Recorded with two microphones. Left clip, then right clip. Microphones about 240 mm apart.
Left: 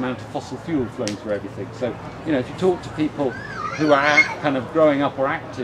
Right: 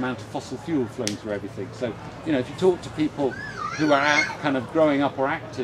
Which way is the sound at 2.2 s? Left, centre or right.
Right.